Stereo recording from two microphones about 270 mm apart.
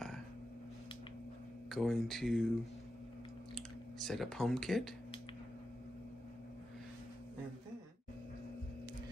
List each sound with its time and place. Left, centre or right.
1.7 s speech: centre
3.5 s speech: centre